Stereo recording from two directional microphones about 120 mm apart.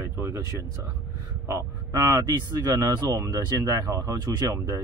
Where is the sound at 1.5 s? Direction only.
25° right (ahead or behind).